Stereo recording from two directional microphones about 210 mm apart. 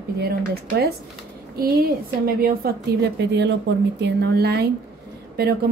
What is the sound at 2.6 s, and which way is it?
A woman's voice, 45° right (ahead or behind).